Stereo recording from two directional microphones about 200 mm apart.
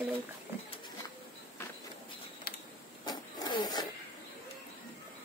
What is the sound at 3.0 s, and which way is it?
Vehicle, 20° left (ahead or behind).